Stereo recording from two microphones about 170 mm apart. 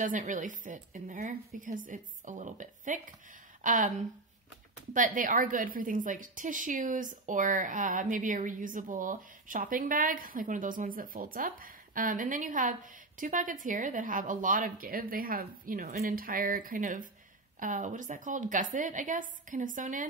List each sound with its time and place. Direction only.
0.0 s a woman's voice: 50° right (ahead or behind)
4.9 s a woman's voice: 50° right (ahead or behind)